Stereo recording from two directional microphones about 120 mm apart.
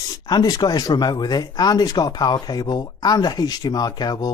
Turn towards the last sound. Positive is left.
turn(degrees=35)  # may be behind; listen again after turning